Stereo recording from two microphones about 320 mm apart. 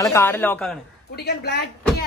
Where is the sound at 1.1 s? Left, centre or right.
Left.